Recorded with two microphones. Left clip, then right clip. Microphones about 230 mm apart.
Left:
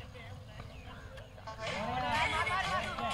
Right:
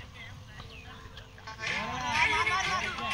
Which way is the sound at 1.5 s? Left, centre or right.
Left.